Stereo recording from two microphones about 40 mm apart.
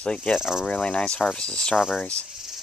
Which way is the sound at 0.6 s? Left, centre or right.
Left.